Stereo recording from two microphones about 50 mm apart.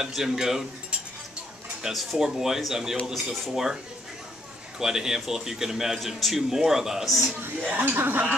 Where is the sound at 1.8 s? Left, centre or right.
Centre.